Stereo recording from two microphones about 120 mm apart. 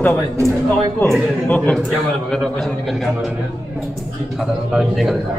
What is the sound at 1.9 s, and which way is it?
A man's voice, centre (ahead or behind).